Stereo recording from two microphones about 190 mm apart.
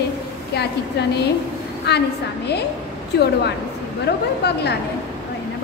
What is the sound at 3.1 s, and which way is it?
Speech, 60° left (ahead or behind).